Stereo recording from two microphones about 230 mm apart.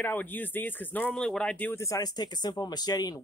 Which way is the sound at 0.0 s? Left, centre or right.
Centre.